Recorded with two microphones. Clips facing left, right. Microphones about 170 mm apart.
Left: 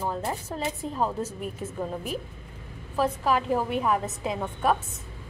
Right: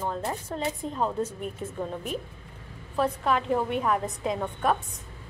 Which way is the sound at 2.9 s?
5° left (ahead or behind).